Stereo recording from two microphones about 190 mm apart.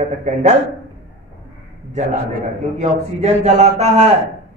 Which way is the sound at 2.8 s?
35° right (ahead or behind).